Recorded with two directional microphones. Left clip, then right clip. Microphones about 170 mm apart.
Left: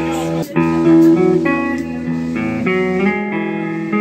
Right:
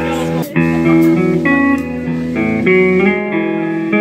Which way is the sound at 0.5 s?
10° right (ahead or behind).